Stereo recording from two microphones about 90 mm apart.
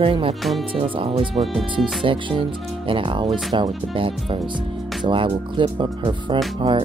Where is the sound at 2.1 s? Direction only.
75° right (ahead or behind).